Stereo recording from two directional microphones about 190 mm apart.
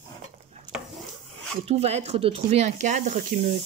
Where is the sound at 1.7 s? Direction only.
35° right (ahead or behind).